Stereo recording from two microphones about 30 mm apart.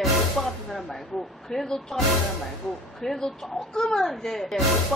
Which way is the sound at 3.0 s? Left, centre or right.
Centre.